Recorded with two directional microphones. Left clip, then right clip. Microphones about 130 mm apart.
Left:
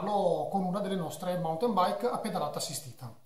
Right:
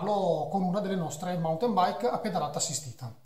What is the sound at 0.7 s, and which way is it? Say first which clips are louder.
A man's voice: right 2 dB; 20° right (ahead or behind).